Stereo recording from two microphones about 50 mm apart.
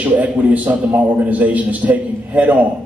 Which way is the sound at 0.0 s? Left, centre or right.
Right.